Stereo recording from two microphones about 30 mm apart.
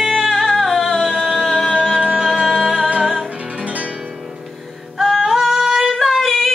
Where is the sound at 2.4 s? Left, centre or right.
Right.